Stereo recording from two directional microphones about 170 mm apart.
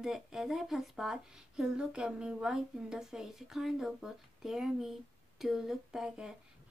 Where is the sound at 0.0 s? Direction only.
Centre (ahead or behind).